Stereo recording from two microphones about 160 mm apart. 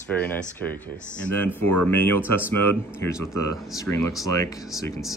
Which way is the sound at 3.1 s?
20° left (ahead or behind).